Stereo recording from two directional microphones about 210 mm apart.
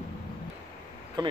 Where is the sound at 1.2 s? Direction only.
20° right (ahead or behind).